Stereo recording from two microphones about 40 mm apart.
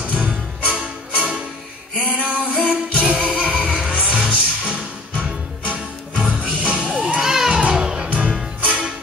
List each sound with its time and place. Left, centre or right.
0.0 s music: right
2.0 s female singing: right
2.5 s music: right
7.2 s children playing: centre
7.7 s music: right
8.1 s music: right